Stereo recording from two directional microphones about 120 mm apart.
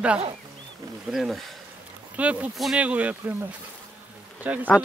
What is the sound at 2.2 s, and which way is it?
Speech, 10° right (ahead or behind).